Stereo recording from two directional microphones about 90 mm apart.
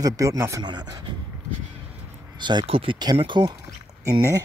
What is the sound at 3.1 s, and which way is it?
Speech, 65° right (ahead or behind).